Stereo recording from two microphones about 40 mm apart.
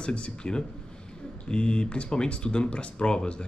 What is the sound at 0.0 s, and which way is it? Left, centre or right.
Speech, left.